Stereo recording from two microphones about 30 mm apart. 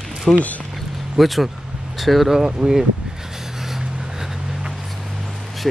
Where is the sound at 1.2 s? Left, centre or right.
Centre.